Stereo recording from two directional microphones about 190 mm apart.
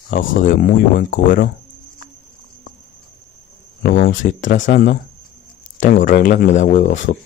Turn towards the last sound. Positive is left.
turn(degrees=40)  # may be behind; listen again after turning